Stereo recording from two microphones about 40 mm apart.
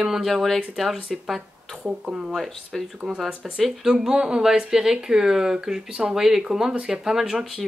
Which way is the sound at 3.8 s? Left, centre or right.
Centre.